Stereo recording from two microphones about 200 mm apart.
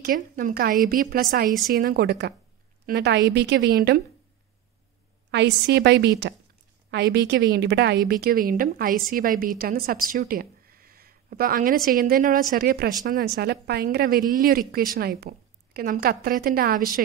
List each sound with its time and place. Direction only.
0.0 s a woman's voice: 45° right (ahead or behind)
5.3 s a woman's voice: 60° right (ahead or behind)